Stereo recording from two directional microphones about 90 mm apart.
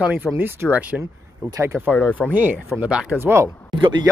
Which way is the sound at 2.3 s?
20° right (ahead or behind).